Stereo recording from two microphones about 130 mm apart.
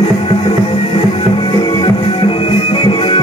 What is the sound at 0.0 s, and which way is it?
Music, 45° left (ahead or behind).